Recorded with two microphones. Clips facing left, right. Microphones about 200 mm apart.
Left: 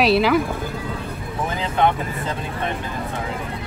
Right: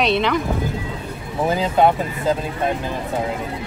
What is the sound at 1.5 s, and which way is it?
Speech, 35° right (ahead or behind).